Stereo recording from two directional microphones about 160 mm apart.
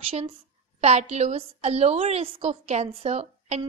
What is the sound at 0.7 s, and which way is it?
A woman's voice, 40° right (ahead or behind).